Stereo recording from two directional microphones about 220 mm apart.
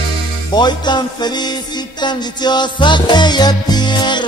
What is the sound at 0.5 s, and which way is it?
Music, 20° left (ahead or behind).